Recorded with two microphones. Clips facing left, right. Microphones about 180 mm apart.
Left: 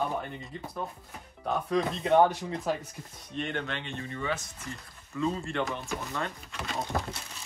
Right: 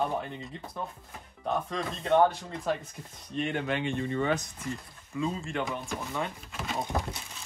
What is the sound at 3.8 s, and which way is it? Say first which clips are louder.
Speech: right 7 dB; 15° right (ahead or behind).